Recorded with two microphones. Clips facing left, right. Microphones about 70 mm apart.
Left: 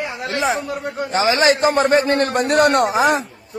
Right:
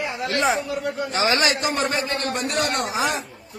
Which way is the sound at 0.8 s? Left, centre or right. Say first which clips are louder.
Left 7 dB; left.